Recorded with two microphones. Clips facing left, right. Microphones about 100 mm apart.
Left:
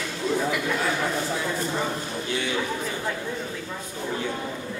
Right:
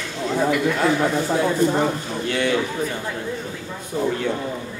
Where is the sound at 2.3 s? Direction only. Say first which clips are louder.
Right 7 dB; 65° right (ahead or behind).